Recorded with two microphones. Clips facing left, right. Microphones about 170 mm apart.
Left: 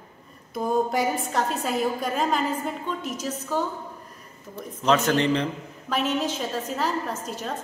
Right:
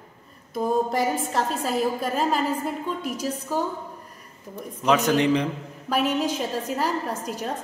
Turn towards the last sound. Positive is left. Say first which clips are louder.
# right 1 dB
turn(degrees=-15)  # may be behind; listen again after turning